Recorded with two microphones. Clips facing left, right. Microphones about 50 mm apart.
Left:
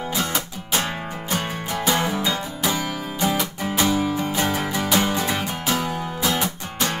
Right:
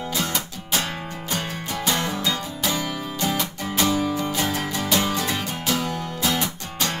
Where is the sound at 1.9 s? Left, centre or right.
Centre.